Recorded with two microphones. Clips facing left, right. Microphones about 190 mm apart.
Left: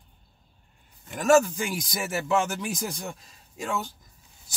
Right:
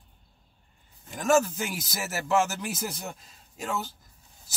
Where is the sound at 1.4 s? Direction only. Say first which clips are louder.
Left 2 dB; 5° right (ahead or behind).